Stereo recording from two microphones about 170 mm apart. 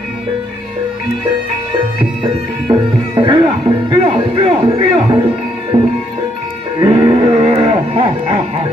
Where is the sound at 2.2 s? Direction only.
25° right (ahead or behind).